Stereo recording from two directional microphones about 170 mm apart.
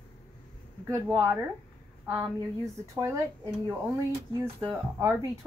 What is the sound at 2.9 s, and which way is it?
Speech, 15° right (ahead or behind).